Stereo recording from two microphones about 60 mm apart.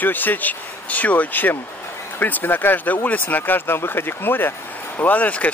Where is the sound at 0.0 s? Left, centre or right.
Left.